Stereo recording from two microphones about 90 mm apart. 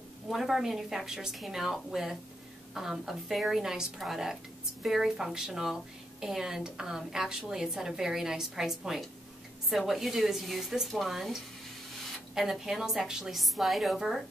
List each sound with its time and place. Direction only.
0.3 s a woman's voice: centre (ahead or behind)
12.4 s a woman's voice: 5° right (ahead or behind)